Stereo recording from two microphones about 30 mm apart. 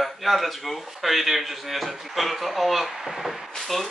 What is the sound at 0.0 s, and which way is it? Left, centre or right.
A man's voice, centre.